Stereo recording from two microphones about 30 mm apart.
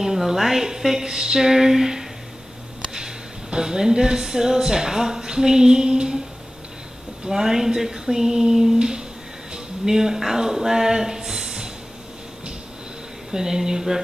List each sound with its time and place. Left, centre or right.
0.0 s a woman's voice: centre
3.5 s speech: right
7.2 s speech: centre
8.7 s speech: right
9.8 s speech: centre
13.3 s speech: right